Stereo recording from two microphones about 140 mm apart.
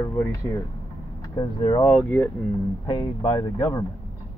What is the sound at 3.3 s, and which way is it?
Speech, 20° left (ahead or behind).